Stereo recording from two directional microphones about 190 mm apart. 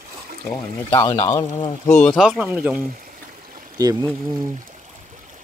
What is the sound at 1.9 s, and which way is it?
Speech, 5° left (ahead or behind).